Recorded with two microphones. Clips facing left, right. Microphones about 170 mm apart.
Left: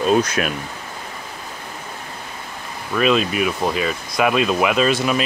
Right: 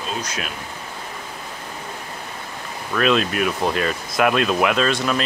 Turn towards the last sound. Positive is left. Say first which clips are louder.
# left 2 dB
turn(degrees=5)  # may be behind; listen again after turning